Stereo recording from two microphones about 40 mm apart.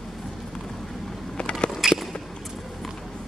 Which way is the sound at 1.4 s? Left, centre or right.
Left.